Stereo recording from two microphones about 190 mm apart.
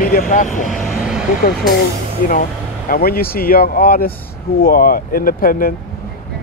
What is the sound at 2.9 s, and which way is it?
Speech, 50° left (ahead or behind).